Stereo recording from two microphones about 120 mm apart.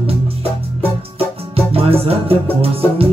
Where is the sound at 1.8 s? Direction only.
55° right (ahead or behind).